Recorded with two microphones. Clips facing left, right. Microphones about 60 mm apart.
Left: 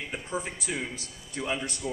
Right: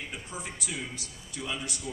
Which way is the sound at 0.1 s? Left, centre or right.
Left.